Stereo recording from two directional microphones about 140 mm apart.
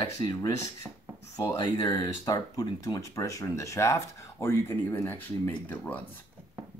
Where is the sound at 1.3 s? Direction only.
25° left (ahead or behind); by 6.0 s 10° left (ahead or behind).